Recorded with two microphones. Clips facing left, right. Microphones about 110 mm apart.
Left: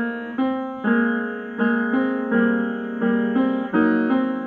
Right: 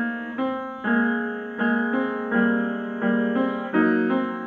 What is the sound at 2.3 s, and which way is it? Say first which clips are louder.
Music: right 1 dB; 25° left (ahead or behind).